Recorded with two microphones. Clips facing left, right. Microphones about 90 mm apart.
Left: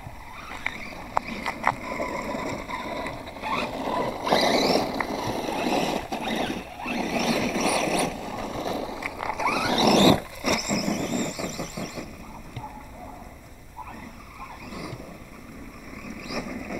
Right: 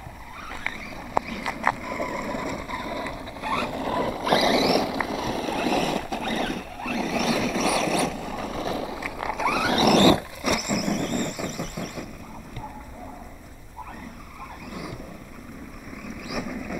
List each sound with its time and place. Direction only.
1.8 s a sound: 40° right (ahead or behind)
2.9 s vehicle: 40° right (ahead or behind)
4.2 s boat: 50° right (ahead or behind)
8.5 s skateboard: 5° right (ahead or behind)
9.3 s zipper: 45° right (ahead or behind)
10.4 s vehicle: 20° right (ahead or behind)
10.9 s vehicle: 55° right (ahead or behind)
16.3 s vehicle: 35° right (ahead or behind)